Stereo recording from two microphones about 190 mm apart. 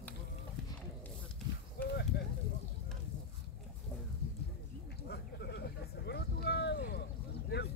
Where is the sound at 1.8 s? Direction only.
60° left (ahead or behind).